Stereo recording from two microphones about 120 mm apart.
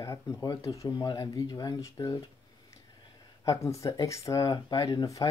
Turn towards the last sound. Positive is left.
turn(degrees=30)  # may be behind; listen again after turning